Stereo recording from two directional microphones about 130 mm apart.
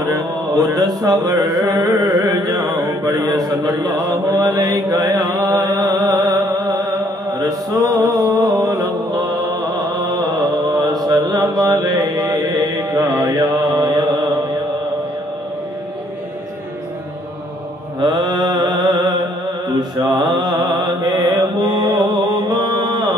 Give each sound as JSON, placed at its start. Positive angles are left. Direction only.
{"t": 0.0, "sound": "a sound", "side_deg": -30}
{"t": 10.7, "sound": "mantra", "side_deg": -30}
{"t": 18.0, "sound": "mantra", "side_deg": -35}